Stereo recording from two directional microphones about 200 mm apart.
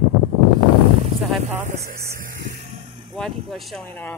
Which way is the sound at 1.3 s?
Centre (ahead or behind).